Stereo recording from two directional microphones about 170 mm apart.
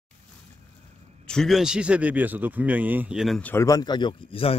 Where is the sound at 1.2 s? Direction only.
Centre (ahead or behind).